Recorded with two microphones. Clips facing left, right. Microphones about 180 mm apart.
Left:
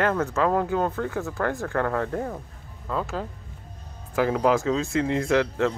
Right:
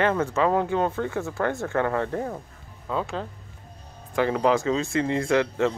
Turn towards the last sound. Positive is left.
turn(degrees=0)  # may be behind; listen again after turning